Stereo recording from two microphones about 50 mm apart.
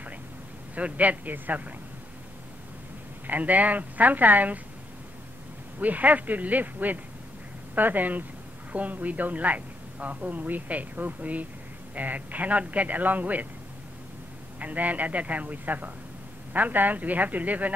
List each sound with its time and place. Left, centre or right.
0.7 s a woman's voice: right
3.3 s a woman's voice: right
5.8 s a woman's voice: right
14.6 s a woman's voice: right